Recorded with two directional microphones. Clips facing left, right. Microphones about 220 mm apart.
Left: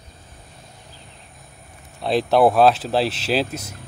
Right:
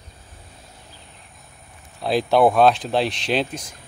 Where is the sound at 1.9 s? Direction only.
Centre (ahead or behind).